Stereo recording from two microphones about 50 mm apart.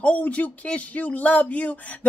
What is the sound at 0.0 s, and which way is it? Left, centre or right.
Speech, left.